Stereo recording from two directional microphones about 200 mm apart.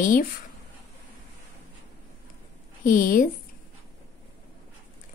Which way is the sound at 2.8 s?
45° left (ahead or behind).